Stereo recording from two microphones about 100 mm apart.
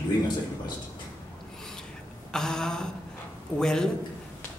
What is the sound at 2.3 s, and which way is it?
A man's voice, 5° left (ahead or behind).